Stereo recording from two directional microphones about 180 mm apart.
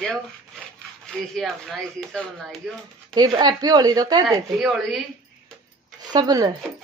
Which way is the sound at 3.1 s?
20° right (ahead or behind).